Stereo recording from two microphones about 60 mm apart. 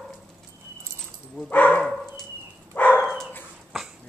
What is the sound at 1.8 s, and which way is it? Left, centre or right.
Dog, centre.